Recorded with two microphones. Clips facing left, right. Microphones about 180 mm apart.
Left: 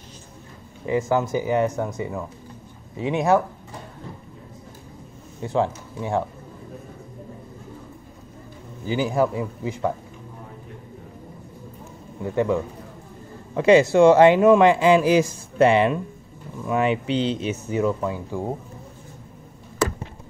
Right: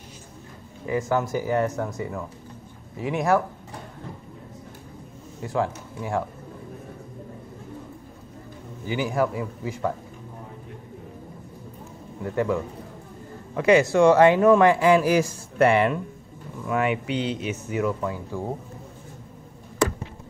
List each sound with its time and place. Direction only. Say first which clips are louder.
0.8 s speech: left 3 dB; 25° left (ahead or behind)
5.4 s speech: left 3 dB; 25° left (ahead or behind)
8.8 s speech: left 3 dB; 30° left (ahead or behind)
13.6 s speech: left 3 dB; 25° left (ahead or behind)